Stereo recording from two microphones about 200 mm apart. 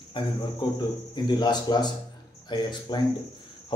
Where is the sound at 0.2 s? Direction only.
25° left (ahead or behind).